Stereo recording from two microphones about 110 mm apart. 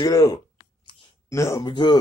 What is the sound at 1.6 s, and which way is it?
Speech, 45° left (ahead or behind).